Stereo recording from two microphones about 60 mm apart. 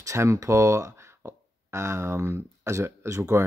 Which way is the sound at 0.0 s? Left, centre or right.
Right.